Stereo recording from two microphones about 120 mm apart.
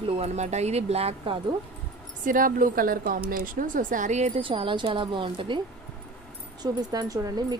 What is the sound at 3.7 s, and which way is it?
Speech, 90° right.